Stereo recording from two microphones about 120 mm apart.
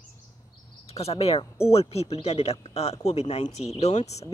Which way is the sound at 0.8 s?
60° left (ahead or behind).